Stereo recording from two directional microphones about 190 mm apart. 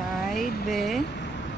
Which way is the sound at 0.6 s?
Centre (ahead or behind).